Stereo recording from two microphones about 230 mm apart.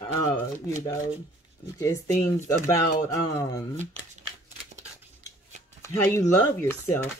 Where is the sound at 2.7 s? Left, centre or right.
Centre.